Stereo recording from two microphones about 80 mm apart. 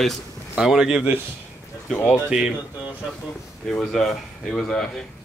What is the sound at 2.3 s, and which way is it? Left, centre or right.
Speech, centre.